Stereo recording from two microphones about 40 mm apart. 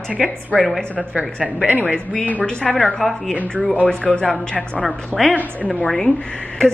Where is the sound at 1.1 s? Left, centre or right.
Right.